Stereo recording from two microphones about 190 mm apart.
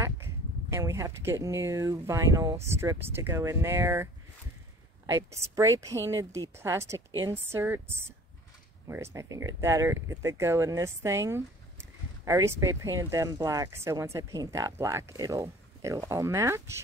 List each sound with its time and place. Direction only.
0.7 s speech: 15° right (ahead or behind)